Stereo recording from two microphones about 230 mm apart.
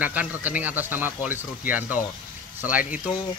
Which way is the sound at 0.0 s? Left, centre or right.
Centre.